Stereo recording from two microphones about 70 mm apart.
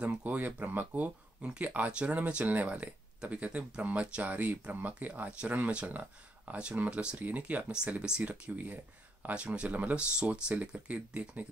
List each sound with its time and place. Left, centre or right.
0.0 s speech: centre